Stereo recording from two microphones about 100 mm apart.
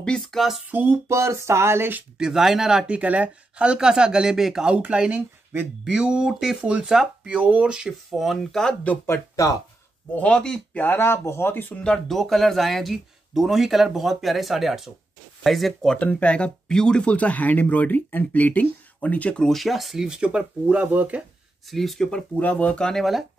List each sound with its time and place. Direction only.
0.0 s speech: 5° left (ahead or behind)
0.7 s speech: 20° right (ahead or behind)
2.1 s speech: 5° right (ahead or behind)
8.8 s speech: 25° left (ahead or behind)
10.1 s speech: 10° left (ahead or behind)
11.7 s speech: 10° left (ahead or behind); by 21.2 s 15° right (ahead or behind)
21.6 s speech: centre (ahead or behind)
22.4 s speech: 15° left (ahead or behind)